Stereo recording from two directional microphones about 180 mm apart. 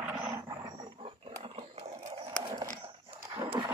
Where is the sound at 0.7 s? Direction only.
30° right (ahead or behind).